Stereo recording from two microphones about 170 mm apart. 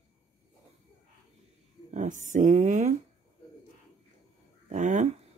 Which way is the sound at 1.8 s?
45° right (ahead or behind).